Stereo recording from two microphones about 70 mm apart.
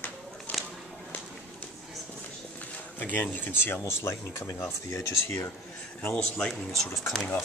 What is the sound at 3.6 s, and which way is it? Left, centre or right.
Speech, left.